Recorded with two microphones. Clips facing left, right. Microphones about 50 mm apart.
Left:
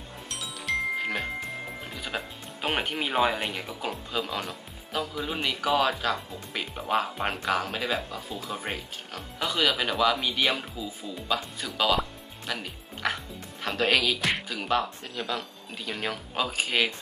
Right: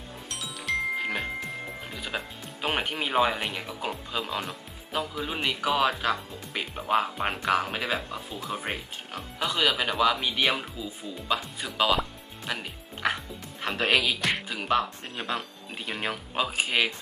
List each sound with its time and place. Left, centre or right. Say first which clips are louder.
0.3 s music: even; centre
6.5 s speech: right 2 dB; centre
8.4 s speech: right 2 dB; centre
15.1 s speech: even; right
15.9 s speech: even; centre